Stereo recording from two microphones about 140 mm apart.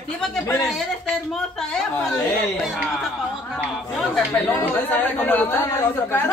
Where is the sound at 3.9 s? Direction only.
Centre (ahead or behind).